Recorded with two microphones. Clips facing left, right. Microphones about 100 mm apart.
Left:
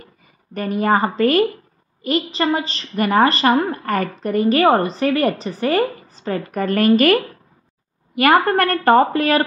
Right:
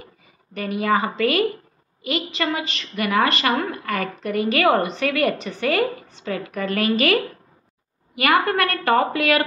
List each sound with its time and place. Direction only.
0.6 s a woman's voice: 40° left (ahead or behind)
8.2 s a woman's voice: 40° left (ahead or behind)